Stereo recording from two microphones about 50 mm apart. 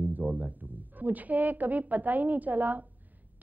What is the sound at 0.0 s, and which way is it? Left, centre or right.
A woman's voice, right.